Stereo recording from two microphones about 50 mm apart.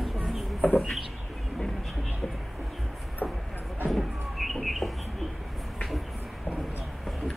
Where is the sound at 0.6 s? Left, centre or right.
Left.